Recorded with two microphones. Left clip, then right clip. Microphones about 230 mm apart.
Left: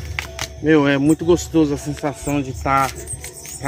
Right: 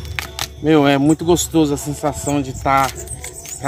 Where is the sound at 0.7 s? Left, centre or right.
Right.